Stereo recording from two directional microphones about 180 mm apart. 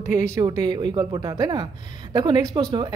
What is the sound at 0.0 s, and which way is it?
Speech, 15° right (ahead or behind).